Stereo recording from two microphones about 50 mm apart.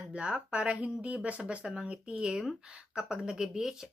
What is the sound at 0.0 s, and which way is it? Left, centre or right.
Speech, right.